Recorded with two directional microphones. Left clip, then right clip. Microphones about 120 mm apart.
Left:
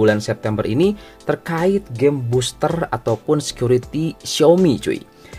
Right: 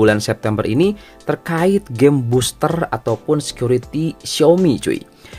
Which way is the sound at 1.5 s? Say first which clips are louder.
Right 4 dB; 30° right (ahead or behind).